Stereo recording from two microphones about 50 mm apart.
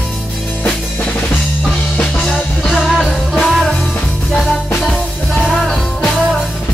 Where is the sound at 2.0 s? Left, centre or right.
Centre.